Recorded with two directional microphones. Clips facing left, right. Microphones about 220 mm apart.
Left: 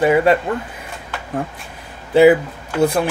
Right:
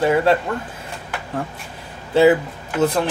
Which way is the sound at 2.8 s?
15° left (ahead or behind).